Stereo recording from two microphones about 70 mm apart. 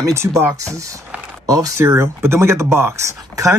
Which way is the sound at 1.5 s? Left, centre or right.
Right.